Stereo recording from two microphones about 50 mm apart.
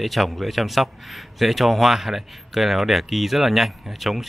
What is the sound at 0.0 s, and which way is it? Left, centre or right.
Speech, centre.